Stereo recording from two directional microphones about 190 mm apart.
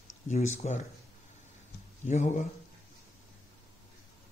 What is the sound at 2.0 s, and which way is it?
Speech, 40° left (ahead or behind).